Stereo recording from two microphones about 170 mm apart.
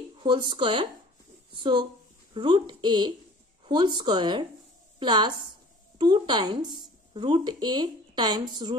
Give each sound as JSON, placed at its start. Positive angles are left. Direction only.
{"t": 0.2, "sound": "a woman's voice", "side_deg": -25}